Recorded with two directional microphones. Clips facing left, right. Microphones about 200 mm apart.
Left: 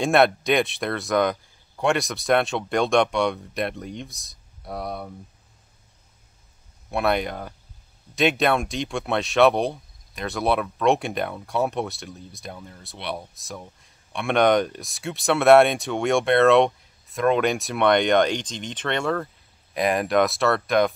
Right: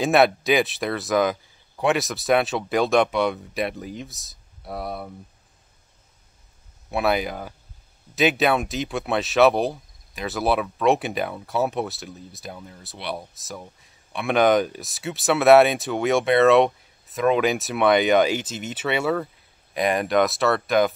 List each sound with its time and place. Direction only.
0.0 s speech: centre (ahead or behind)
6.9 s speech: centre (ahead or behind)